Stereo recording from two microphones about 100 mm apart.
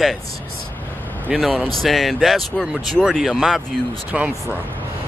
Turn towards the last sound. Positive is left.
turn(degrees=-10)  # may be behind; listen again after turning